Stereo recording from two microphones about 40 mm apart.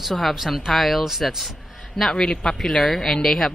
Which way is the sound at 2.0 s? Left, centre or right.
Centre.